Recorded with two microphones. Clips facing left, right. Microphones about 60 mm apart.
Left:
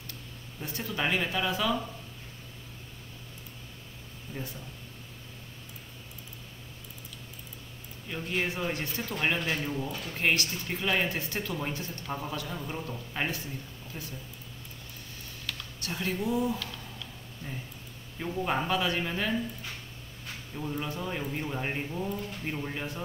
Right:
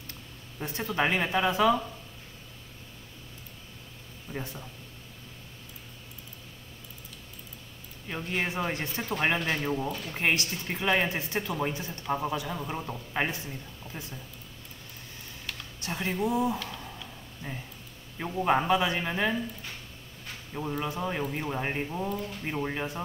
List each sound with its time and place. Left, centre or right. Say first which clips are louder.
0.6 s speech: right 4 dB; right
4.3 s speech: right 2 dB; right
8.1 s speech: right 1 dB; centre
15.4 s a sound: right 1 dB; right
18.4 s speech: right 5 dB; centre
20.5 s speech: right 3 dB; right